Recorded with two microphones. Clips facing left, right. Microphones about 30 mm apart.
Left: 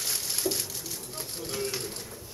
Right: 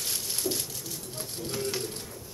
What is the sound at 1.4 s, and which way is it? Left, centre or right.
Speech, centre.